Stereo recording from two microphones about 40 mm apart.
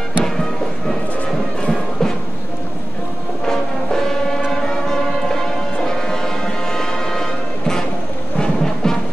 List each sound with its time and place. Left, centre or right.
0.2 s music: centre
3.4 s music: centre